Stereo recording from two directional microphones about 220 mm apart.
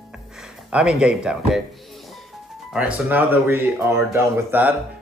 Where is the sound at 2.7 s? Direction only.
5° right (ahead or behind).